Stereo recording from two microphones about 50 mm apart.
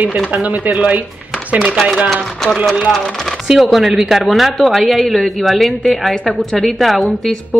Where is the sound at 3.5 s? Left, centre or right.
Centre.